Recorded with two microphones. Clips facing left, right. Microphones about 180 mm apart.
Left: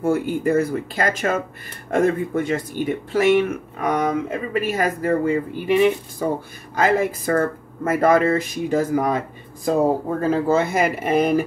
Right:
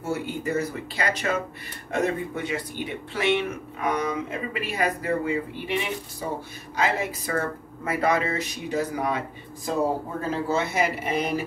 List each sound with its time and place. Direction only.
0.0 s speech: 50° left (ahead or behind)
10.2 s speech: 50° left (ahead or behind)